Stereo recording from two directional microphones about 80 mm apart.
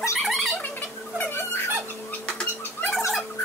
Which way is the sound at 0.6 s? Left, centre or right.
Left.